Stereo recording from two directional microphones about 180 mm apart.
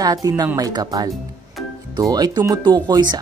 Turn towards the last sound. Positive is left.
turn(degrees=-25)  # may be behind; listen again after turning